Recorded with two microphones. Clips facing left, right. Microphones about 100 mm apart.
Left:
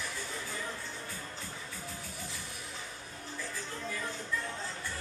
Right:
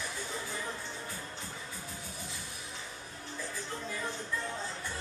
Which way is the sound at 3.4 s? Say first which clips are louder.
Right 1 dB; 20° right (ahead or behind).